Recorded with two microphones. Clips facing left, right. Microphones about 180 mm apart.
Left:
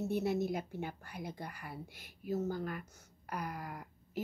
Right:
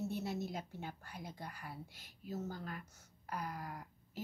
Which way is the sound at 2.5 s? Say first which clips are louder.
Left 7 dB; 55° left (ahead or behind).